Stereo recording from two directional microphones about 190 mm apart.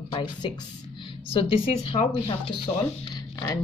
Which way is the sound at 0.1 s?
25° left (ahead or behind).